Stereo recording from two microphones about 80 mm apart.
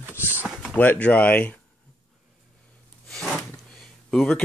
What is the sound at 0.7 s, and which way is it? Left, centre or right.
Speech, left.